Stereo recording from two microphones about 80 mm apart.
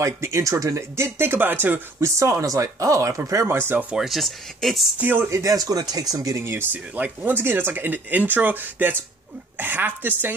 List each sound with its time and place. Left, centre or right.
0.0 s speech: right
3.4 s speech: right
3.9 s speech: centre
4.9 s speech: right
5.3 s speech: right
6.4 s speech: right